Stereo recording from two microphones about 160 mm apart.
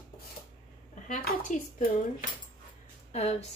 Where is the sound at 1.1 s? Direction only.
55° left (ahead or behind).